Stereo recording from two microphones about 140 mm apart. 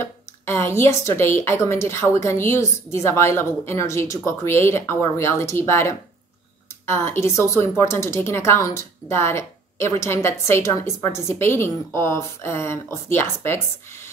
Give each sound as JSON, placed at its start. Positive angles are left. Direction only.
{"t": 0.0, "sound": "speech", "side_deg": 15}